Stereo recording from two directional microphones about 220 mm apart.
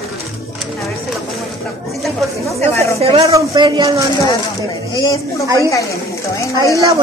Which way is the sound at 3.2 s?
15° right (ahead or behind).